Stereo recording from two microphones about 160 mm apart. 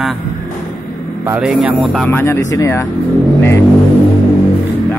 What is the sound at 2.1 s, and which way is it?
Speech, 15° left (ahead or behind).